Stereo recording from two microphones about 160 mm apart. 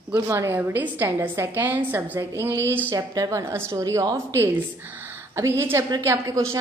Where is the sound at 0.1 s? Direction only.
15° right (ahead or behind).